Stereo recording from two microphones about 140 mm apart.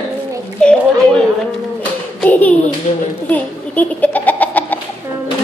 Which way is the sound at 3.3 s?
10° left (ahead or behind).